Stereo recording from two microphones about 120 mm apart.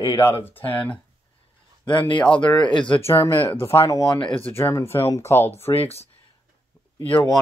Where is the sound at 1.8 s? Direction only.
45° left (ahead or behind).